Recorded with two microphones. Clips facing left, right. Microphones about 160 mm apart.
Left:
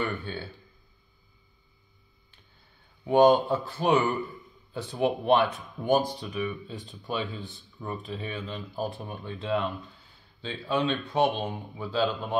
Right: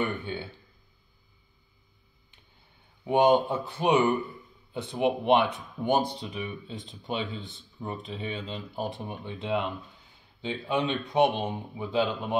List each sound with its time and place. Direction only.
0.0 s speech: 20° right (ahead or behind)
3.1 s speech: 15° right (ahead or behind)